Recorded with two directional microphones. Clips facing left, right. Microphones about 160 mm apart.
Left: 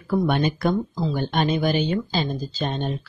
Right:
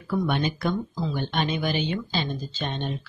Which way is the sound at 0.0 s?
45° left (ahead or behind).